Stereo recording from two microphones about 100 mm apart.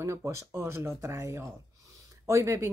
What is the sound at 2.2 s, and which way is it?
Speech, 30° right (ahead or behind).